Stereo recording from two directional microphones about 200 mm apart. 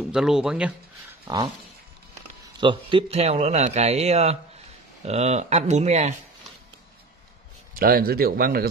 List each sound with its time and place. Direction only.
0.1 s speech: 5° right (ahead or behind)
1.2 s a sound: 20° right (ahead or behind)
2.6 s a man's voice: 25° right (ahead or behind)
7.7 s speech: 50° right (ahead or behind)